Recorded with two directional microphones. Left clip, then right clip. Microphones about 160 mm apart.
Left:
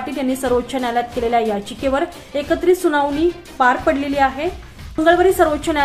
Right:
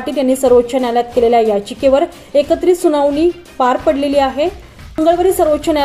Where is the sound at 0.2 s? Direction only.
10° right (ahead or behind).